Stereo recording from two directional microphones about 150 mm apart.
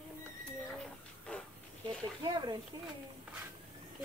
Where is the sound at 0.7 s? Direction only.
5° left (ahead or behind).